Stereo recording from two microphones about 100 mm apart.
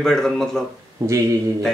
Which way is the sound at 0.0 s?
5° left (ahead or behind).